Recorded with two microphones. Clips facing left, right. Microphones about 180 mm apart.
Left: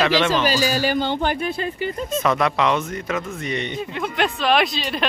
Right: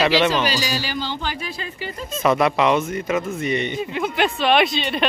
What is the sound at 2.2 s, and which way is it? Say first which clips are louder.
Speech: right 3 dB; 5° right (ahead or behind).